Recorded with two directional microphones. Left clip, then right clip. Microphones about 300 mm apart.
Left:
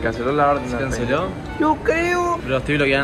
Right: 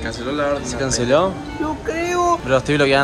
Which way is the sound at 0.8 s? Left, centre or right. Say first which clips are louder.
Right 5 dB; centre.